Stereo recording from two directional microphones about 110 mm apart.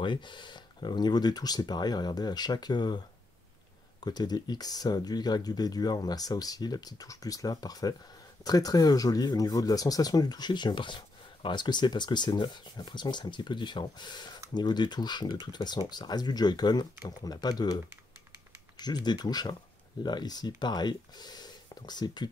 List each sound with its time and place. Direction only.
0.0 s speech: 45° left (ahead or behind)
4.0 s speech: 40° left (ahead or behind)
18.8 s speech: 40° left (ahead or behind)